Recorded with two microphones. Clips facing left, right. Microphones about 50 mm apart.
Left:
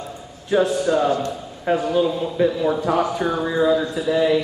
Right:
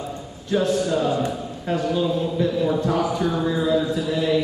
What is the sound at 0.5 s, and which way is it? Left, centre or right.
Speech, left.